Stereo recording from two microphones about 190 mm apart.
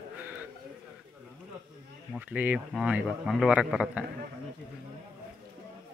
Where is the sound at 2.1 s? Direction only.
10° right (ahead or behind).